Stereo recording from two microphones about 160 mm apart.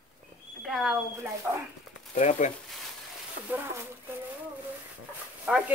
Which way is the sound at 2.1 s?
50° left (ahead or behind).